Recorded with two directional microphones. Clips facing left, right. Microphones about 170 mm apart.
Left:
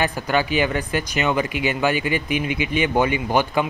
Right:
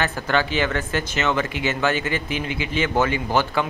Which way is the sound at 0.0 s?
15° left (ahead or behind).